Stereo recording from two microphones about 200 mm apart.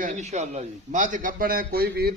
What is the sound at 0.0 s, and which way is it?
A man's voice, 35° right (ahead or behind).